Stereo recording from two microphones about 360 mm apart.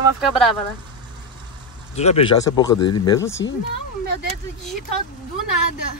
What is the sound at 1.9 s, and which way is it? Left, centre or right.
Speech, centre.